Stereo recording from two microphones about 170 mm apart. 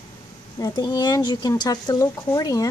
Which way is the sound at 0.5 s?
20° left (ahead or behind).